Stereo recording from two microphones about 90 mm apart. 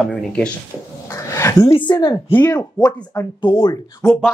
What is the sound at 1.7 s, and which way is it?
Speech, 65° left (ahead or behind).